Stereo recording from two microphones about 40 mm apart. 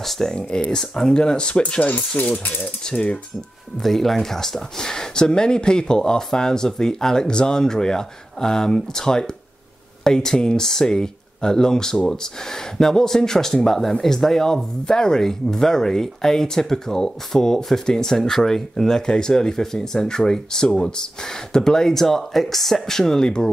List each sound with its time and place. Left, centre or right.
0.0 s speech: centre
0.3 s speech: left
0.7 s speech: centre
1.8 s speech: left
2.8 s speech: centre
3.8 s speech: centre